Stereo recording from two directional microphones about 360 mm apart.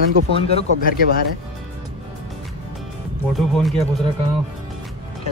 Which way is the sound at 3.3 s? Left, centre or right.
Centre.